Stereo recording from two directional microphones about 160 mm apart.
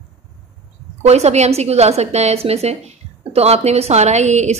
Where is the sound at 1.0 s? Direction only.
40° right (ahead or behind).